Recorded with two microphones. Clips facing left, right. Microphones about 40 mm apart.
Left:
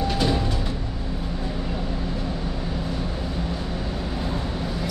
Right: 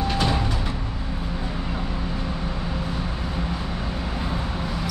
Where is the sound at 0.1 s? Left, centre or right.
Centre.